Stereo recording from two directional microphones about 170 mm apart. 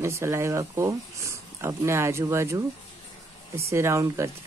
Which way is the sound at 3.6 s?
15° right (ahead or behind).